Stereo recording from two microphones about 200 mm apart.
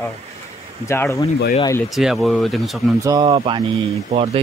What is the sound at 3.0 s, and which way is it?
Speech, 20° right (ahead or behind).